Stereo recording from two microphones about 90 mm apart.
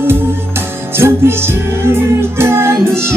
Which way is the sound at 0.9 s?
25° right (ahead or behind).